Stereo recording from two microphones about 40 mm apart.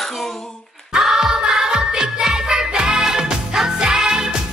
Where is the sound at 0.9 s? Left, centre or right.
Centre.